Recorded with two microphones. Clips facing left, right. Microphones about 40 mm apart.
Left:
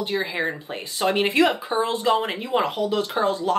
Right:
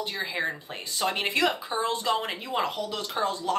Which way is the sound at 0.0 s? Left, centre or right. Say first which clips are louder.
Left 5 dB; centre.